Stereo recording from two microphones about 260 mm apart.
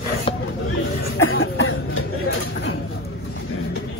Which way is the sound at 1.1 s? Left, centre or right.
Left.